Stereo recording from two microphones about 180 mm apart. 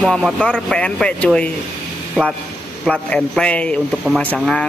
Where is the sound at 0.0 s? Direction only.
Centre (ahead or behind).